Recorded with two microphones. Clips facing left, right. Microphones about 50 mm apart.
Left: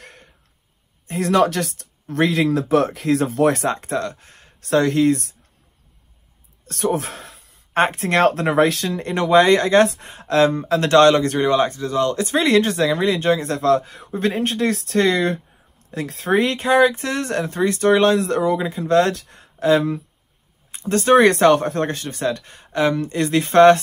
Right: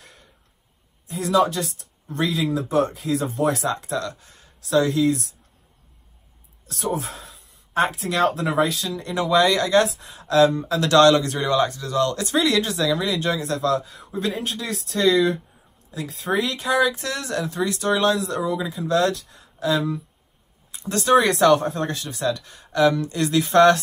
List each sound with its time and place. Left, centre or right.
0.0 s throat clearing: left
1.0 s speech: left
3.5 s speech: left
6.7 s speech: left
7.7 s speech: left
16.3 s speech: left
20.9 s speech: left